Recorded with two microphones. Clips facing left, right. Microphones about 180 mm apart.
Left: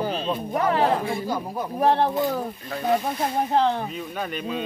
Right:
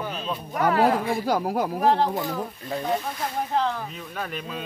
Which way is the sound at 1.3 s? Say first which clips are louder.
Right 4 dB; 90° right.